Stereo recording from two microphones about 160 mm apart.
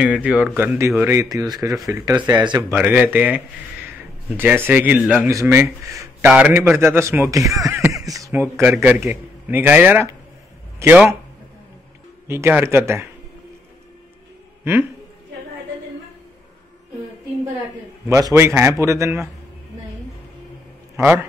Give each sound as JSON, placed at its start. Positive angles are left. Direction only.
{"t": 0.0, "sound": "a man's voice", "side_deg": -5}
{"t": 2.1, "sound": "speech", "side_deg": -25}
{"t": 2.7, "sound": "a man's voice", "side_deg": -10}
{"t": 5.3, "sound": "a man's voice", "side_deg": -20}
{"t": 12.3, "sound": "a man's voice", "side_deg": -15}
{"t": 14.6, "sound": "speech", "side_deg": -15}
{"t": 18.0, "sound": "a man's voice", "side_deg": -20}
{"t": 20.9, "sound": "a man's voice", "side_deg": -15}